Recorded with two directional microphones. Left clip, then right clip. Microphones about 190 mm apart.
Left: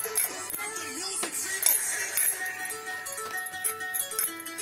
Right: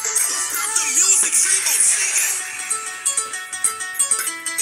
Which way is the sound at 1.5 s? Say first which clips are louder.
Right 11 dB; 5° right (ahead or behind).